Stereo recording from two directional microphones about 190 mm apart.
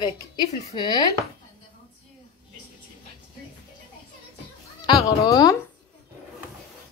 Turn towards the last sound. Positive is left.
turn(degrees=20)  # may be behind; listen again after turning